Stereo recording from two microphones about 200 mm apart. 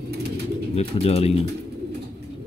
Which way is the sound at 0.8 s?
30° left (ahead or behind).